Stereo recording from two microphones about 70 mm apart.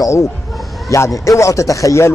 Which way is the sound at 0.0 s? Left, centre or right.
Left.